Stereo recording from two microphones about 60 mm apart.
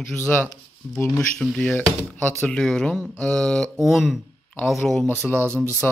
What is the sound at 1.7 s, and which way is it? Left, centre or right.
Speech, left.